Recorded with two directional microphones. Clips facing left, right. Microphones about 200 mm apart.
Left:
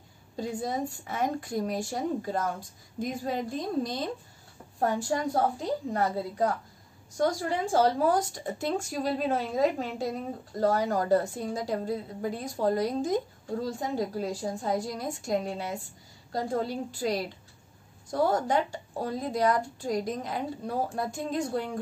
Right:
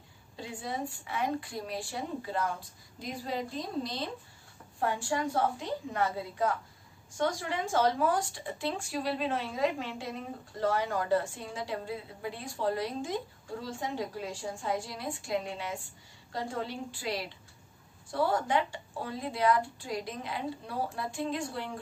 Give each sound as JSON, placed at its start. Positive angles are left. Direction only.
{"t": 0.4, "sound": "a woman's voice", "side_deg": 40}